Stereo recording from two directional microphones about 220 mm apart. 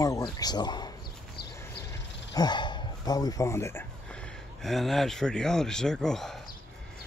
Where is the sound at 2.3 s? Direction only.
20° left (ahead or behind).